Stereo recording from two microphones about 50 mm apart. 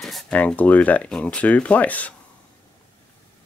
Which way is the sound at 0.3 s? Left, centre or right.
Left.